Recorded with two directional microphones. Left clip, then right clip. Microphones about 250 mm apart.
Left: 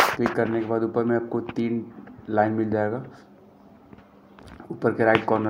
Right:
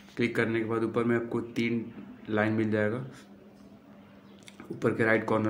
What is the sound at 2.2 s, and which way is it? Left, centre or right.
Speech, centre.